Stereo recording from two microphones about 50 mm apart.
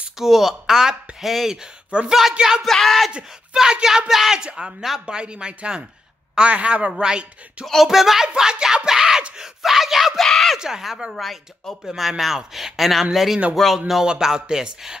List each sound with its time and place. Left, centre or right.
0.2 s speech: centre
1.9 s a woman's voice: right
2.6 s speech: centre
3.5 s speech: centre
7.6 s speech: centre
8.3 s speech: centre
10.6 s speech: centre